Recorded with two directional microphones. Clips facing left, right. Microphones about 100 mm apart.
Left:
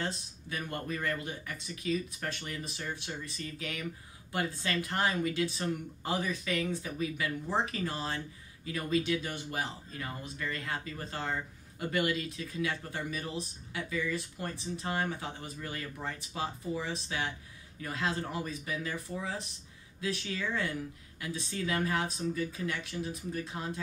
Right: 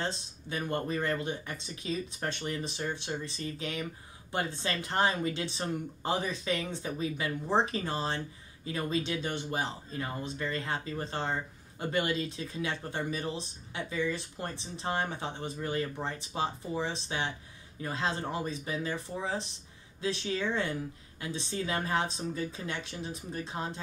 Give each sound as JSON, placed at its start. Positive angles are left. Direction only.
{"t": 0.0, "sound": "speech", "side_deg": -25}